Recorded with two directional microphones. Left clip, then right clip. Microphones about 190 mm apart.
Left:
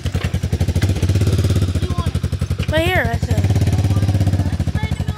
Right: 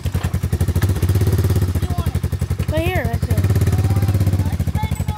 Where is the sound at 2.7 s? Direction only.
Centre (ahead or behind).